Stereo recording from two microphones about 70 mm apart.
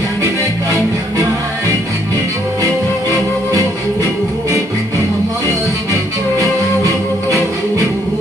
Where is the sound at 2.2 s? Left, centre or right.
Right.